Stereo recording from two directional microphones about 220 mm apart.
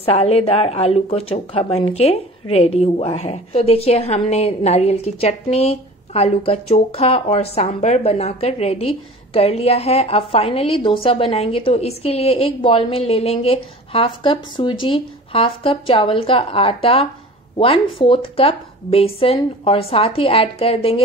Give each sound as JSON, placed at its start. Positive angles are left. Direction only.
{"t": 0.0, "sound": "a woman's voice", "side_deg": 25}